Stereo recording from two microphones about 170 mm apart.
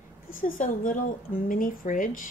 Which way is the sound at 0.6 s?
50° left (ahead or behind).